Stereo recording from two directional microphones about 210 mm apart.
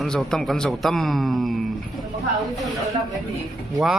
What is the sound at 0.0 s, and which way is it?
Speech, 5° left (ahead or behind).